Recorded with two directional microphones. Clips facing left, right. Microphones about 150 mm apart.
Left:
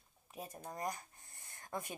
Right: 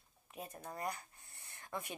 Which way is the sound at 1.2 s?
45° left (ahead or behind).